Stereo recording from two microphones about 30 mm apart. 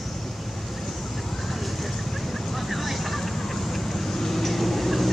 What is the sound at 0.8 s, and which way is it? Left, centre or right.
Vehicle, centre.